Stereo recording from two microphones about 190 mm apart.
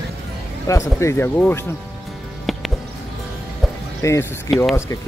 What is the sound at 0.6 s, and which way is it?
Speech, 15° left (ahead or behind).